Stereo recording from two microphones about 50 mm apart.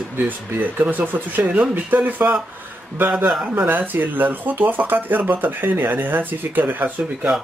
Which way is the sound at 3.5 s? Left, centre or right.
Right.